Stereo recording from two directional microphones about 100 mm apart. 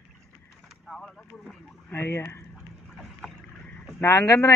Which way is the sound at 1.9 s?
25° left (ahead or behind).